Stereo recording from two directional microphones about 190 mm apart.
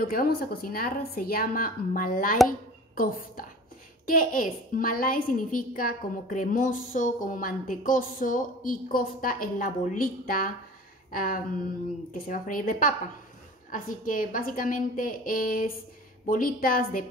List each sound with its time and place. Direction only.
0.0 s a woman's voice: 50° left (ahead or behind)